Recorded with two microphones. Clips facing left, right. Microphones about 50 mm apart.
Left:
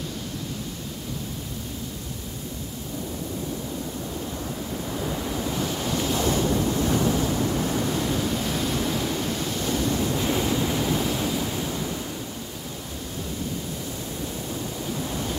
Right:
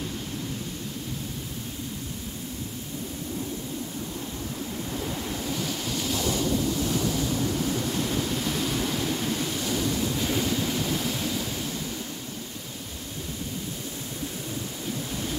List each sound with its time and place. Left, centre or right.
5.6 s waves: left
6.5 s waves: left
8.2 s waves: centre
9.8 s waves: left